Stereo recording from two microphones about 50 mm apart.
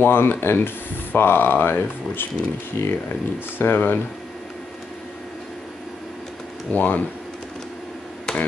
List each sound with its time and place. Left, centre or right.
0.0 s speech: left
3.5 s speech: left
6.7 s speech: left
8.3 s finger snapping: centre